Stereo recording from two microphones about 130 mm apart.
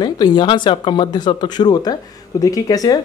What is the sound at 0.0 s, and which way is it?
Speech, 35° left (ahead or behind).